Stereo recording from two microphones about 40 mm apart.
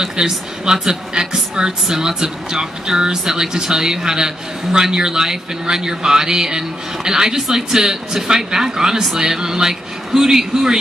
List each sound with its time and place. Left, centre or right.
0.0 s speech: centre